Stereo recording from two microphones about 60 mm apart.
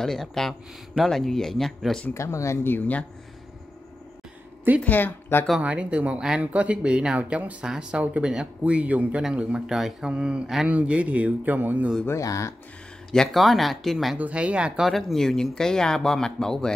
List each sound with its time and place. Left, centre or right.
0.0 s speech: centre
2.1 s speech: left
4.8 s speech: left
5.6 s speech: right
7.6 s speech: centre
9.7 s speech: centre
10.7 s speech: right
12.2 s speech: left
13.1 s speech: centre
14.1 s speech: right
14.8 s speech: centre